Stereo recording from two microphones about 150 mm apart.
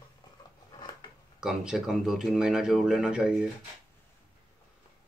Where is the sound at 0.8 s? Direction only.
30° left (ahead or behind).